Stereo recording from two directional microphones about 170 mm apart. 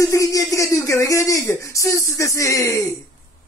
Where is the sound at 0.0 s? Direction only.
20° left (ahead or behind).